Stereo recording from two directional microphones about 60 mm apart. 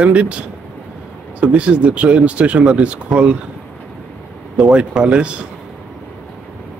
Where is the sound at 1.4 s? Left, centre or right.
Centre.